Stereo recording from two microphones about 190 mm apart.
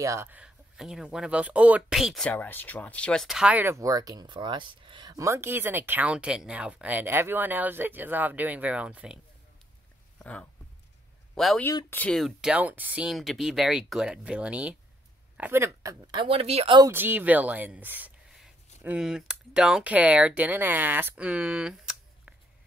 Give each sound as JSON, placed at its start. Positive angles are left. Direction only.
{"t": 0.0, "sound": "speech", "side_deg": -15}
{"t": 10.1, "sound": "a sound", "side_deg": 5}
{"t": 11.3, "sound": "speech", "side_deg": 0}
{"t": 16.9, "sound": "speech", "side_deg": -10}